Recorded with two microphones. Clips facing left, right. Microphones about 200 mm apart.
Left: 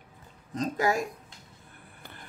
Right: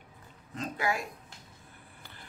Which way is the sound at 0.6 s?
40° left (ahead or behind).